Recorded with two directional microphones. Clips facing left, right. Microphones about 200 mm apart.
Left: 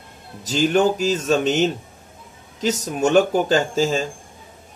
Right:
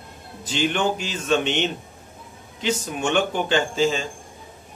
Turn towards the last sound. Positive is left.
turn(degrees=40)  # may be behind; listen again after turning